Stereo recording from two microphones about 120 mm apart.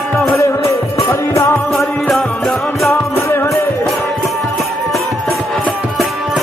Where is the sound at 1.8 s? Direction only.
Centre (ahead or behind).